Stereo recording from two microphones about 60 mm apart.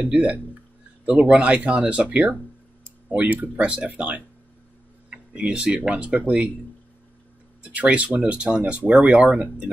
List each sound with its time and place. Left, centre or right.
0.0 s speech: right
7.6 s speech: right